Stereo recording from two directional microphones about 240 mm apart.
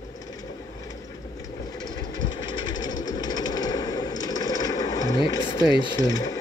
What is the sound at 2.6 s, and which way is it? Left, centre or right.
Sewing machine, centre.